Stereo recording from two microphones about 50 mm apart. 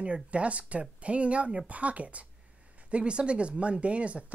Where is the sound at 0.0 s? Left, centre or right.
Right.